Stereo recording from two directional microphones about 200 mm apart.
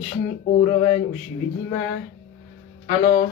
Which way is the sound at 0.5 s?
30° left (ahead or behind).